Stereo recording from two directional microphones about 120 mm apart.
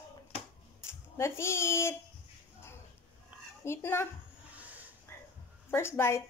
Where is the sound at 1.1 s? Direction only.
20° left (ahead or behind).